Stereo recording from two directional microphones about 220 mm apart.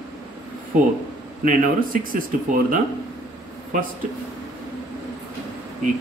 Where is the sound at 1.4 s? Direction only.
40° right (ahead or behind).